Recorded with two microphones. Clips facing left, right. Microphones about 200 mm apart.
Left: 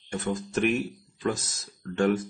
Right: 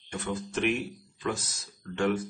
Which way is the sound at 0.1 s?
45° left (ahead or behind).